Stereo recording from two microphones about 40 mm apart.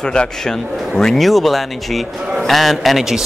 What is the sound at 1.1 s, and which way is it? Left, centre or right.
A man's voice, centre.